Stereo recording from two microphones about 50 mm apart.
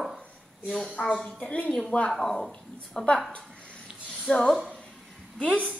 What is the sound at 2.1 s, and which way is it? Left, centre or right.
Speech, centre.